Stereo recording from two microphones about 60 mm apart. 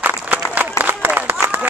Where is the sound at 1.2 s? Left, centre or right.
Right.